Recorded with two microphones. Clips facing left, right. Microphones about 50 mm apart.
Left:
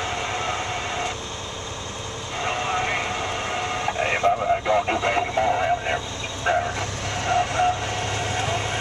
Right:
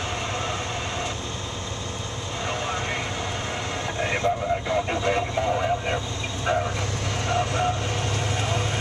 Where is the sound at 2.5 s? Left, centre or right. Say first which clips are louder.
Left 4 dB; left.